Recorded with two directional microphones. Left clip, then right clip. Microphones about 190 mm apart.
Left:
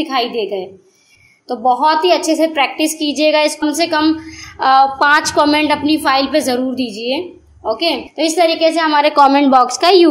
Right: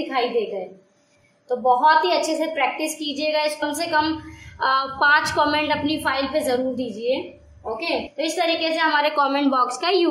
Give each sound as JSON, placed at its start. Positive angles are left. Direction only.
{"t": 0.1, "sound": "a woman's voice", "side_deg": 45}
{"t": 1.5, "sound": "a woman's voice", "side_deg": 40}